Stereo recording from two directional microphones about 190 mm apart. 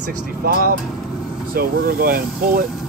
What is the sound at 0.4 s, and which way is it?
Speech, 55° right (ahead or behind).